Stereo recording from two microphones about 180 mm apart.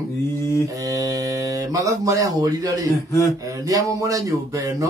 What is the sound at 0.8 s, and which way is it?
Speech, 20° right (ahead or behind).